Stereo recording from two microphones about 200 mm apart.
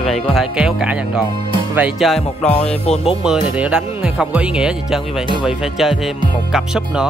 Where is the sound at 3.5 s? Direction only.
5° right (ahead or behind).